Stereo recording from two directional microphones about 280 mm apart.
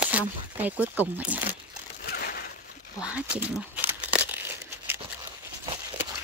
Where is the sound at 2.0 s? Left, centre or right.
Left.